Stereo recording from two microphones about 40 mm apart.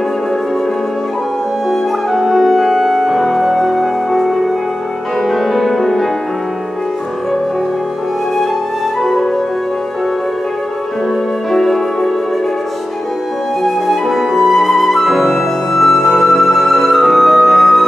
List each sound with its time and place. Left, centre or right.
1.7 s music: centre
9.0 s music: centre
11.5 s music: centre
13.6 s flute: centre